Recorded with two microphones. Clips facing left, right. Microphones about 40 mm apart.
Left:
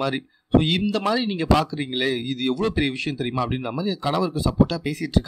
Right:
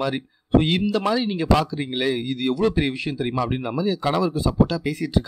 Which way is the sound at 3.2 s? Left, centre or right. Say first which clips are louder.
Right 2 dB; centre.